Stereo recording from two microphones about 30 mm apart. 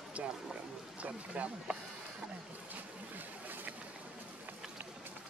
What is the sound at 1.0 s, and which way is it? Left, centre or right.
Speech, right.